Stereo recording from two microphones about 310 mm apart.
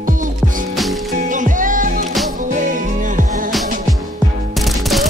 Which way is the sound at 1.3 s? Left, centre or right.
Right.